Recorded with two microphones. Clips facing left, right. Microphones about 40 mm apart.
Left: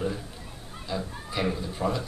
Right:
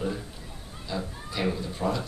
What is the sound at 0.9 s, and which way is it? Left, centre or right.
Speech, centre.